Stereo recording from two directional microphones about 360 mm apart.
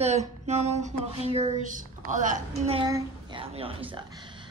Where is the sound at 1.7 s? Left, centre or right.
Right.